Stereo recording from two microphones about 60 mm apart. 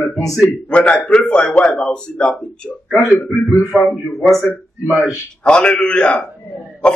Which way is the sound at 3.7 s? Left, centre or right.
Centre.